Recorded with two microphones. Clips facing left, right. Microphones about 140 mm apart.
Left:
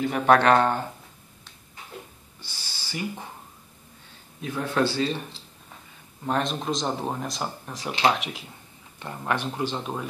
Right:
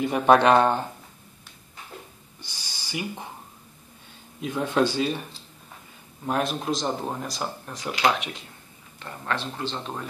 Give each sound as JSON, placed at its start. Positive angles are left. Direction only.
{"t": 0.0, "sound": "speech", "side_deg": -20}
{"t": 2.4, "sound": "owl", "side_deg": -15}
{"t": 4.4, "sound": "speech", "side_deg": -15}
{"t": 6.2, "sound": "speech", "side_deg": -5}
{"t": 9.0, "sound": "speech", "side_deg": 15}